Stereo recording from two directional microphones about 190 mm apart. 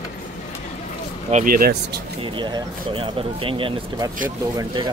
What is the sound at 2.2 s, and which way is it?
Speech, 25° right (ahead or behind).